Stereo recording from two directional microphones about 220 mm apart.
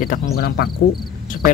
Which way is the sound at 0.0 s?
40° left (ahead or behind).